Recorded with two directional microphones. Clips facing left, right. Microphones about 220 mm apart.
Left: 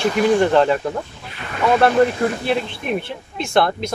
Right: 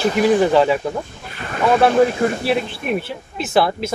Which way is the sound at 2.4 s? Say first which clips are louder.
Right 1 dB; 5° right (ahead or behind).